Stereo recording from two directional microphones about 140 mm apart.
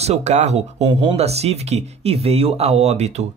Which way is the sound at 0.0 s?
50° right (ahead or behind).